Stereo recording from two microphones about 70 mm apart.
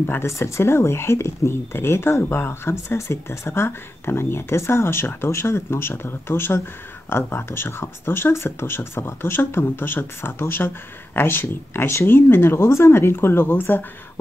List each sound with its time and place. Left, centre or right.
0.0 s speech: left